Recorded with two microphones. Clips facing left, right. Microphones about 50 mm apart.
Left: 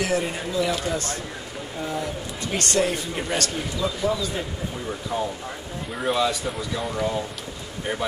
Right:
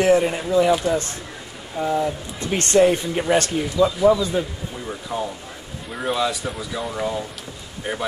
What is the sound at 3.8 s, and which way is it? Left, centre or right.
Speech, centre.